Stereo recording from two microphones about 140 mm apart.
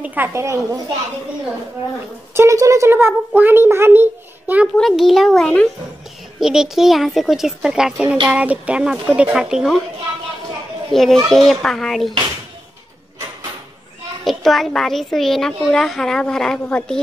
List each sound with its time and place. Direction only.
0.0 s a woman's voice: 15° right (ahead or behind)
2.3 s a child's voice: 20° right (ahead or behind)
4.7 s a child's voice: centre (ahead or behind)
10.9 s a child's voice: centre (ahead or behind)
14.2 s a child's voice: centre (ahead or behind)